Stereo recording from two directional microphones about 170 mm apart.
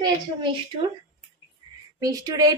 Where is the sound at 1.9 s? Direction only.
20° right (ahead or behind).